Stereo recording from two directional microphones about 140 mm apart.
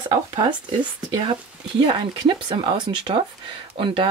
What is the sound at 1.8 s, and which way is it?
Speech, 35° right (ahead or behind).